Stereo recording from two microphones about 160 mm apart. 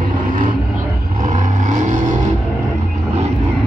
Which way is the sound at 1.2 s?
50° right (ahead or behind).